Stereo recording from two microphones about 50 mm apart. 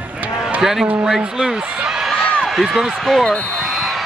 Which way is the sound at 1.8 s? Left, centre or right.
Centre.